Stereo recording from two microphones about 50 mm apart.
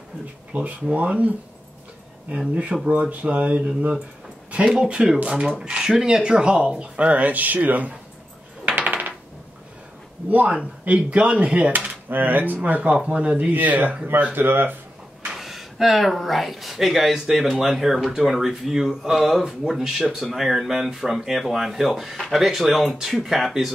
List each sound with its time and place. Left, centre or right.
0.5 s speech: right
2.3 s speech: right
2.9 s speech: right
8.6 s coin: right
10.3 s speech: right
14.3 s speech: right
15.3 s speech: centre